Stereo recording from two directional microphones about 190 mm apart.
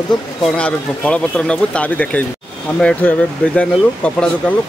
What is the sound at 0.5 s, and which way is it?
Speech, 5° left (ahead or behind).